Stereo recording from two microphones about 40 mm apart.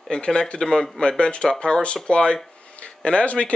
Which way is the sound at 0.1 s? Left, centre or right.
Left.